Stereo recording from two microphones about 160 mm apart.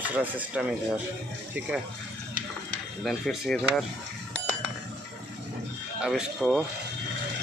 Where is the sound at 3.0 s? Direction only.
Centre (ahead or behind).